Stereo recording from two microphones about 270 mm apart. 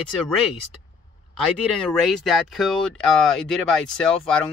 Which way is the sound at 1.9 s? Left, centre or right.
Centre.